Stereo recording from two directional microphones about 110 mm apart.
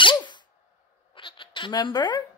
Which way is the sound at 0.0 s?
45° left (ahead or behind).